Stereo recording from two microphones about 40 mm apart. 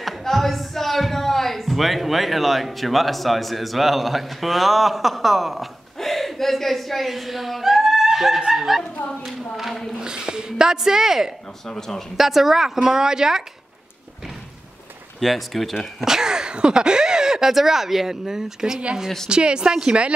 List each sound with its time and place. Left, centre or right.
0.0 s speech: centre
5.9 s a sound: centre
8.5 s speech: centre
9.6 s a sound: centre
9.9 s a sound: centre
11.6 s a man's voice: centre
12.2 s speech: centre
15.1 s speech: centre
16.0 s a woman's voice: centre